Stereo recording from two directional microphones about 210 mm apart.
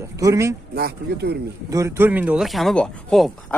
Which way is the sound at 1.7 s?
10° right (ahead or behind).